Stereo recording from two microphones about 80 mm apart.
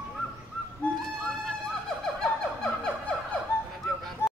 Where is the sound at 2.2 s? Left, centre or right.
Centre.